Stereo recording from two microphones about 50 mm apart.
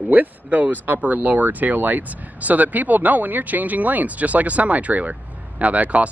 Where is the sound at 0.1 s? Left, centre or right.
Right.